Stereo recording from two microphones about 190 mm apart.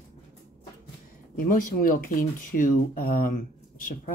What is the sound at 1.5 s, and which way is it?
Speech, 45° left (ahead or behind).